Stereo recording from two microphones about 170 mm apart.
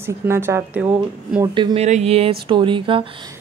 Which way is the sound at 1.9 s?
40° right (ahead or behind).